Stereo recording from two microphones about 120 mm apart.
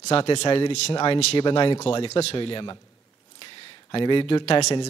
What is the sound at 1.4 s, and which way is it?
Speech, 50° left (ahead or behind).